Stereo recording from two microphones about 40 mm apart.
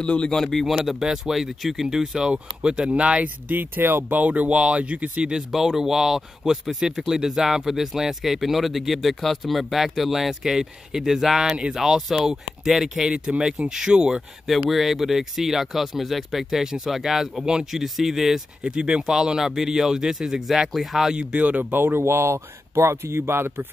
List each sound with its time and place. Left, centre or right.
0.0 s speech: left
0.7 s speech: centre; by 3.3 s right
3.4 s speech: right
5.5 s speech: centre
13.1 s speech: right
13.5 s speech: centre
14.7 s speech: centre
21.1 s speech: right
21.7 s speech: right